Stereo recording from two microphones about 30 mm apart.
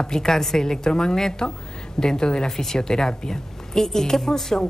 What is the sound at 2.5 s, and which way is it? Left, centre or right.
Speech, centre.